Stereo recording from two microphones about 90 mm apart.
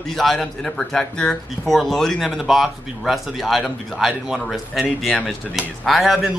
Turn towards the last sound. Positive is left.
turn(degrees=-5)  # may be behind; listen again after turning